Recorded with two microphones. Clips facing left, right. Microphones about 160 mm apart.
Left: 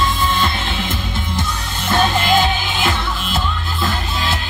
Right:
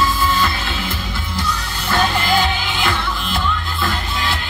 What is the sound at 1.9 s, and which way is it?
Music, 20° left (ahead or behind).